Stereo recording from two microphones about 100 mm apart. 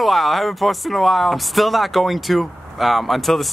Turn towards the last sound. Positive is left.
turn(degrees=0)  # may be behind; listen again after turning